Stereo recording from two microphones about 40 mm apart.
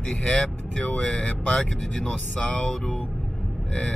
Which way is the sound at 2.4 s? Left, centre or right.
Left.